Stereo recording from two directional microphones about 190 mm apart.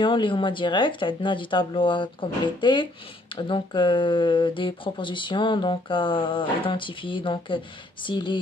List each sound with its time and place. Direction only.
0.0 s speech: 25° left (ahead or behind)